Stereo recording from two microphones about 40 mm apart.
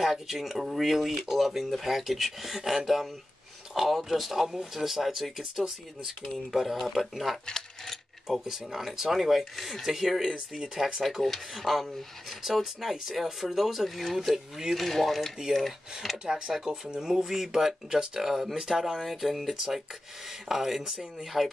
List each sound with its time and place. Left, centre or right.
0.0 s speech: centre
7.5 s mechanisms: centre
8.3 s speech: centre
11.0 s speech: centre
14.8 s speech: centre
16.3 s speech: centre
17.1 s speech: centre